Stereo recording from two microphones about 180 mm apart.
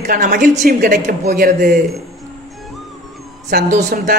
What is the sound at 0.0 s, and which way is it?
Speech, 50° right (ahead or behind).